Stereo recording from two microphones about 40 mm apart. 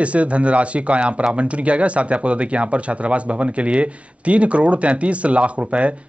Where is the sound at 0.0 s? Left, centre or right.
Right.